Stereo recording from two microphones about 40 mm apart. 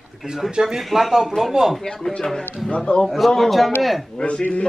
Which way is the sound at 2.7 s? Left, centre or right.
Left.